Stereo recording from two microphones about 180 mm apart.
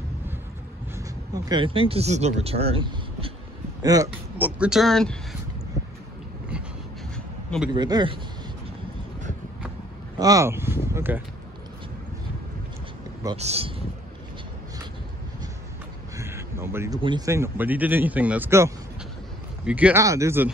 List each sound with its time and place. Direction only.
0.9 s a man's voice: 20° right (ahead or behind)
4.4 s speech: 5° right (ahead or behind)
7.7 s a man's voice: 25° right (ahead or behind)
10.1 s speech: 20° right (ahead or behind)
13.4 s speech: 35° right (ahead or behind)
16.2 s a sound: 15° right (ahead or behind)
17.0 s speech: 20° right (ahead or behind)